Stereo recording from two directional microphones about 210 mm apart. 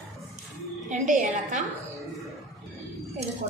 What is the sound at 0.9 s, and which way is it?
Speech, 35° right (ahead or behind).